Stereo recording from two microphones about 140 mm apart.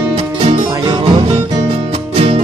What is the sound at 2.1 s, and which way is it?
Music, 45° right (ahead or behind).